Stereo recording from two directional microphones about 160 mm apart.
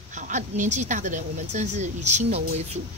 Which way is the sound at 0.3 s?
50° right (ahead or behind).